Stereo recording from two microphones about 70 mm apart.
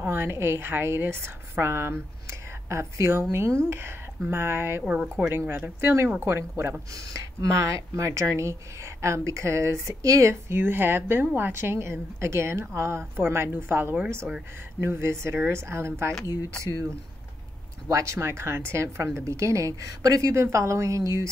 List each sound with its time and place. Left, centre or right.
0.0 s a woman's voice: right
4.8 s speech: centre
5.3 s a woman's voice: right
6.9 s speech: right
10.5 s a woman's voice: right